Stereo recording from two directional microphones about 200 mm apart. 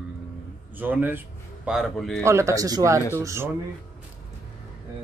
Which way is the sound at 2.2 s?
15° right (ahead or behind).